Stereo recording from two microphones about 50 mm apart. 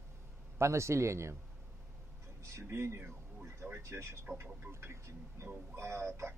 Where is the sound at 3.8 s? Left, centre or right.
Right.